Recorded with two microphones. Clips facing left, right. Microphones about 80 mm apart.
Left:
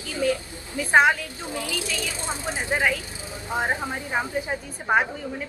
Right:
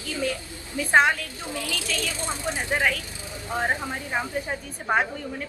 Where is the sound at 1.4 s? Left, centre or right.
Left.